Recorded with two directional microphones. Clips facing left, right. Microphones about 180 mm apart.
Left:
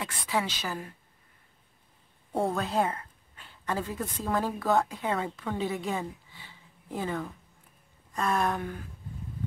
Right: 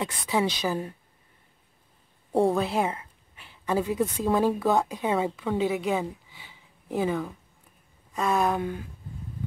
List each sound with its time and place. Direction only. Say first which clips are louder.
0.0 s speech: right 5 dB; 20° right (ahead or behind)
2.5 s a woman's voice: right 3 dB; 10° right (ahead or behind)
8.1 s a sound: right 3 dB; 5° right (ahead or behind)
8.5 s speech: right 5 dB; 20° right (ahead or behind)